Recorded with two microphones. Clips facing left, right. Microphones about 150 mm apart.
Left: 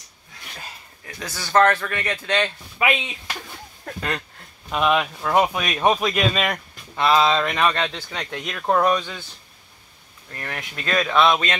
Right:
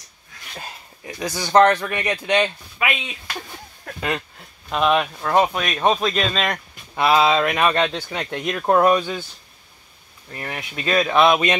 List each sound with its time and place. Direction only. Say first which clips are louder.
0.6 s speech: right 6 dB; 15° right (ahead or behind)
4.0 s speech: right 3 dB; 5° right (ahead or behind)
7.0 s speech: right 2 dB; 10° right (ahead or behind)
10.3 s speech: right 2 dB; 15° right (ahead or behind)